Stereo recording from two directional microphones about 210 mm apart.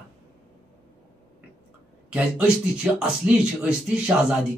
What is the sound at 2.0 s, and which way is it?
Speech, 5° right (ahead or behind).